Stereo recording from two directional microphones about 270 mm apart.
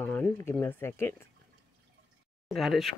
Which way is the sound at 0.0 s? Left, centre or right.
Centre.